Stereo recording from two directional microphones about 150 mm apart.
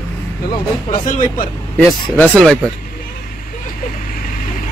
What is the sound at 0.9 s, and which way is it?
Speech, 65° left (ahead or behind).